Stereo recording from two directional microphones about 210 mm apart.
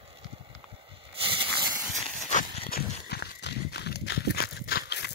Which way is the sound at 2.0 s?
30° left (ahead or behind).